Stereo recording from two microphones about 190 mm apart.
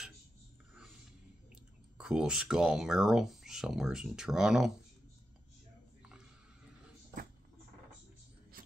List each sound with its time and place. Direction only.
2.0 s speech: 5° right (ahead or behind)